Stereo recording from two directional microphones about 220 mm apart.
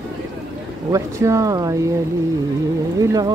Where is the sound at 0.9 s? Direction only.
15° right (ahead or behind).